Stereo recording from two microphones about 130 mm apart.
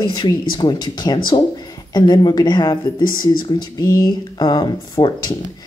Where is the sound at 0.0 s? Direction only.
35° left (ahead or behind).